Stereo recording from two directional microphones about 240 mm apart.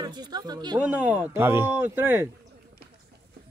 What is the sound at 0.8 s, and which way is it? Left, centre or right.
Speech, centre.